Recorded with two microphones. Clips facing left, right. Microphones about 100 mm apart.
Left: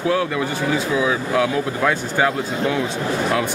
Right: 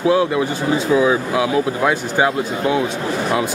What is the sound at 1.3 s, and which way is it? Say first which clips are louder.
Speech: right 2 dB; 10° right (ahead or behind).